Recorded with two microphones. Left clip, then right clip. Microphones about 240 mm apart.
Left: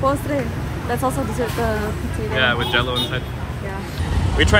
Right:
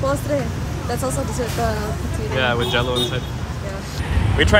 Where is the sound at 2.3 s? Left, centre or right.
Centre.